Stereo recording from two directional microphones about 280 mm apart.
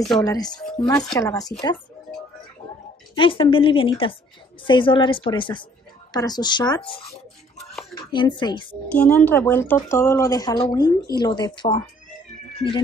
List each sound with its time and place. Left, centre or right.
0.2 s speech: centre
3.2 s a woman's voice: centre
8.9 s speech: centre